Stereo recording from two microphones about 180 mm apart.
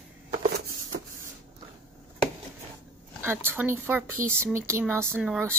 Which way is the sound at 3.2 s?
15° right (ahead or behind).